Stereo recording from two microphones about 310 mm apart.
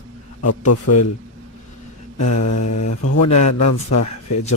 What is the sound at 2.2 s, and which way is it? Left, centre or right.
A man's voice, left.